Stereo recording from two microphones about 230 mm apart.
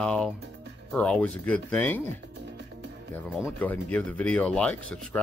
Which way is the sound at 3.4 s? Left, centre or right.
Centre.